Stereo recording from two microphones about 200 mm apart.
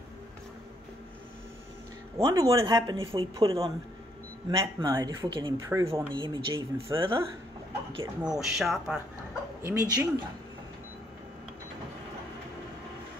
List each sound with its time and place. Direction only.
2.1 s speech: 15° right (ahead or behind)
8.2 s speech: 5° right (ahead or behind)
9.6 s speech: 15° right (ahead or behind)